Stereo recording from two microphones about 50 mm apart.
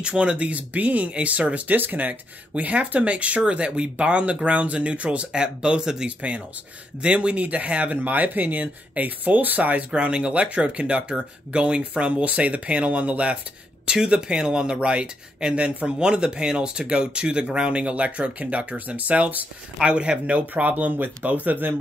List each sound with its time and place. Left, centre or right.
0.0 s speech: right
9.8 s speech: right